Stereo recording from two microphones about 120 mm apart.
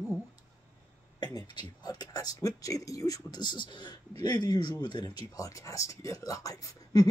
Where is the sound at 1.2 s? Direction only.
35° left (ahead or behind).